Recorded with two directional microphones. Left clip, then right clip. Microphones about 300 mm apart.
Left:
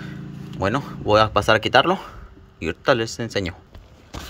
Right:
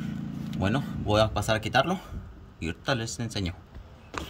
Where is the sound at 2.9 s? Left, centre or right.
Left.